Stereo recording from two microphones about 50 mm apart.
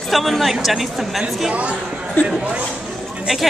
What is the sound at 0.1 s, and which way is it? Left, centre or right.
Speech, centre.